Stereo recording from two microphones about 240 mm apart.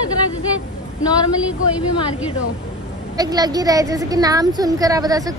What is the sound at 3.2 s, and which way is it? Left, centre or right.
A woman's voice, centre.